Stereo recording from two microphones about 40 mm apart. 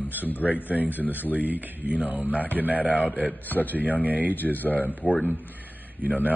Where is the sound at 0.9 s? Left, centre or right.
Right.